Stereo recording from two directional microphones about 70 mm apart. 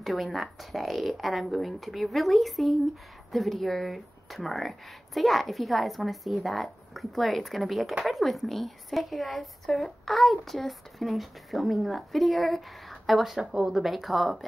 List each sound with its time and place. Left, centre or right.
0.0 s a woman's voice: centre
13.8 s a woman's voice: centre